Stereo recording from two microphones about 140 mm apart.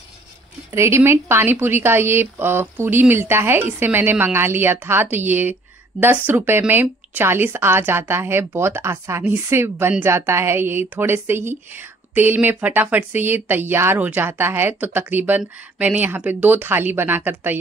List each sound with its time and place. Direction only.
0.7 s speech: 20° right (ahead or behind)